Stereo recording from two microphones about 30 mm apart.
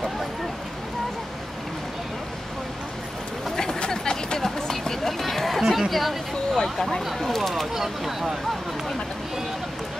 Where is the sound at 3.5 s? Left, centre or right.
Centre.